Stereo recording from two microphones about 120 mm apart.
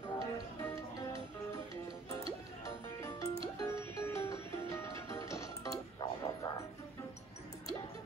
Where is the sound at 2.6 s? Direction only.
25° left (ahead or behind).